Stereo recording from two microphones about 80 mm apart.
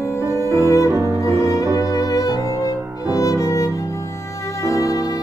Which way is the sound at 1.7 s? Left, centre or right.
Left.